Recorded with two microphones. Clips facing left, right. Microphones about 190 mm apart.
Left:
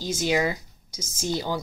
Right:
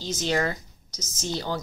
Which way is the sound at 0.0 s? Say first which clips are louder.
Left 2 dB; 10° left (ahead or behind).